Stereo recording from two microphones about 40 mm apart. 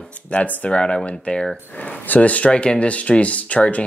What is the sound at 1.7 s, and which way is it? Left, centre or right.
Speech, left.